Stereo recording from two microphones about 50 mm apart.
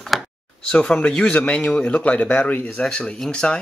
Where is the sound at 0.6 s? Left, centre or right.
Left.